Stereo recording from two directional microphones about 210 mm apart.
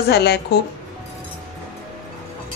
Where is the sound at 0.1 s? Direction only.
50° left (ahead or behind).